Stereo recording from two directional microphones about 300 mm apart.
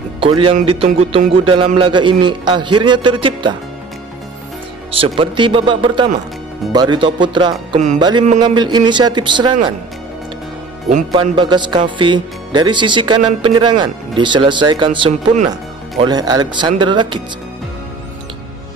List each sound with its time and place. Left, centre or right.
0.2 s speech: centre
5.0 s speech: centre
11.1 s speech: centre